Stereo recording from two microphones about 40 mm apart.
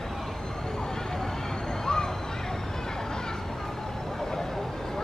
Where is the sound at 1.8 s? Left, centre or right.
Centre.